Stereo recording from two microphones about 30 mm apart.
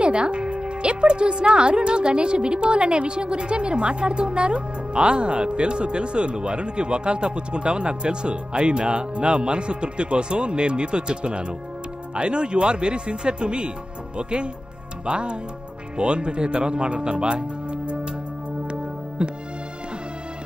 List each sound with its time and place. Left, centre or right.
0.0 s a woman's voice: right
18.7 s music: right